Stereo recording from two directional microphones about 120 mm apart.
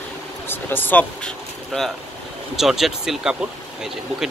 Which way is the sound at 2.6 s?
Centre (ahead or behind).